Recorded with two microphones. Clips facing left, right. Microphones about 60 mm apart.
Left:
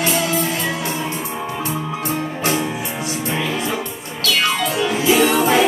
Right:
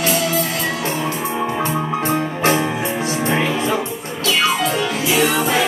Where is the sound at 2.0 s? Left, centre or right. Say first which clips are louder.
Right 4 dB; right.